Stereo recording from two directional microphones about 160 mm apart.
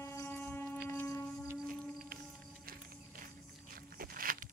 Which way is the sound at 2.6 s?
65° right (ahead or behind).